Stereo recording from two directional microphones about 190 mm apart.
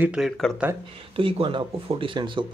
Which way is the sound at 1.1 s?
25° right (ahead or behind).